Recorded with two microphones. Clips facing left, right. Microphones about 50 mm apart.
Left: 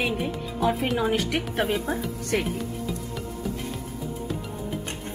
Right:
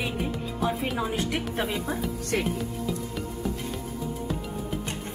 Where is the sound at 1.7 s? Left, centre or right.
Centre.